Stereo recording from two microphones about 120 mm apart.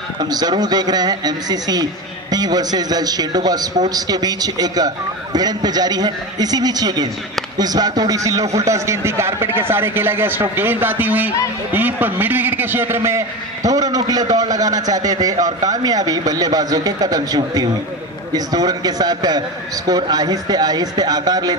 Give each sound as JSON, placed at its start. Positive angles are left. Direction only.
{"t": 0.2, "sound": "a man's voice", "side_deg": -35}